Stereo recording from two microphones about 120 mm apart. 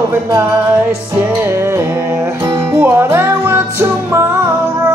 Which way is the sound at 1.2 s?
25° right (ahead or behind).